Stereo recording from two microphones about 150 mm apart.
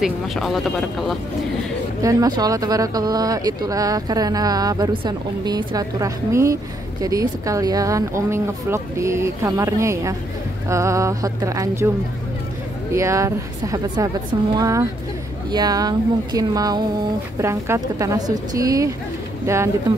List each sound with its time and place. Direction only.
0.0 s speech: centre (ahead or behind)
2.0 s speech: 20° right (ahead or behind)
12.9 s speech: 20° right (ahead or behind)